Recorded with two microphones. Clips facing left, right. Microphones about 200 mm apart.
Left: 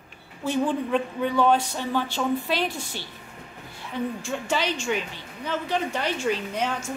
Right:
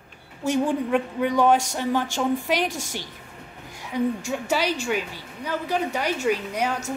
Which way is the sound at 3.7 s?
15° right (ahead or behind).